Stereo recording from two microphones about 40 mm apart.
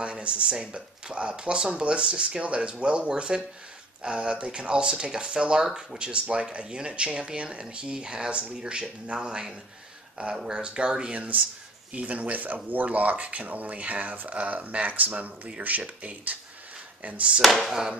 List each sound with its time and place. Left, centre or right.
0.0 s speech: right
5.9 s speech: right
17.4 s speech: centre